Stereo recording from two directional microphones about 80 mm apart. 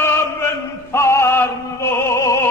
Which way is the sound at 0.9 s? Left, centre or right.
Left.